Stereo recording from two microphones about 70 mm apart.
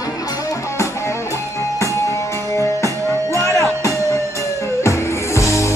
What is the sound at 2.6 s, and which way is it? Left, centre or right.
Music, left.